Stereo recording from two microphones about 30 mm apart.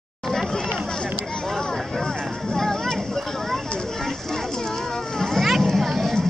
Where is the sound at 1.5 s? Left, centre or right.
Centre.